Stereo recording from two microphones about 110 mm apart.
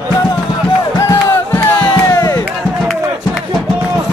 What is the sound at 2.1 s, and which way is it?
Music, 30° left (ahead or behind).